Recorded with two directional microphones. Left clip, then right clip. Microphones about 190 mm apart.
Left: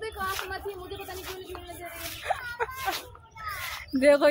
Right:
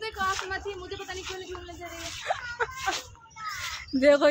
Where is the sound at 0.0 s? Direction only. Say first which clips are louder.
Right 3 dB; 10° right (ahead or behind).